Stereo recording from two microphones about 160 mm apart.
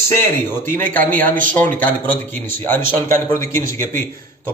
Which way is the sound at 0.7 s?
10° left (ahead or behind).